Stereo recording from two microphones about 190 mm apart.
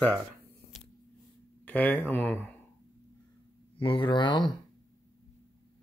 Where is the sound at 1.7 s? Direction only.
10° left (ahead or behind).